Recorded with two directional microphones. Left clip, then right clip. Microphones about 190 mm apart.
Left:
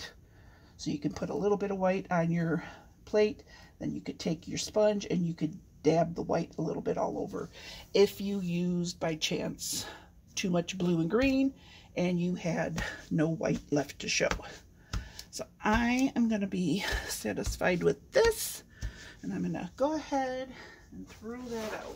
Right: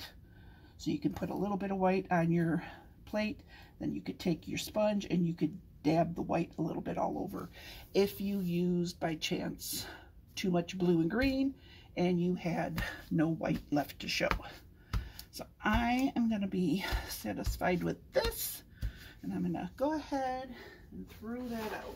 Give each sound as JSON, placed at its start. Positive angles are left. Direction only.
{"t": 1.0, "sound": "speech", "side_deg": 35}
{"t": 7.6, "sound": "speech", "side_deg": 55}